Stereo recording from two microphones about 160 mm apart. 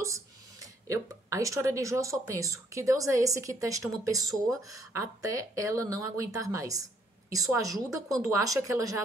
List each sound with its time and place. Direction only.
0.0 s a woman's voice: 20° right (ahead or behind)